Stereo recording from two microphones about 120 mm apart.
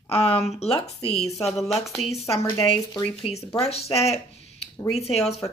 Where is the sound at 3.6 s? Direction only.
60° left (ahead or behind).